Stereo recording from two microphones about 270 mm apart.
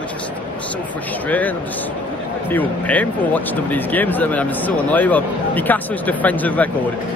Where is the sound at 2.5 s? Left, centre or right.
Centre.